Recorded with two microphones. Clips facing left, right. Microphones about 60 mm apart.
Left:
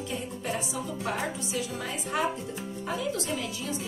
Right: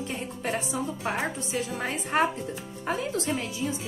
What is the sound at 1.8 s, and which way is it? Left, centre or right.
Music, right.